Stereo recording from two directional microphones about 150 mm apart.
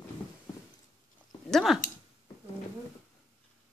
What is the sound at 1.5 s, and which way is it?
Speech, centre (ahead or behind).